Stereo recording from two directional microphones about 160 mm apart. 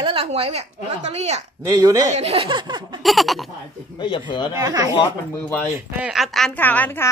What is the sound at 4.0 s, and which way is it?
Speech, 30° left (ahead or behind).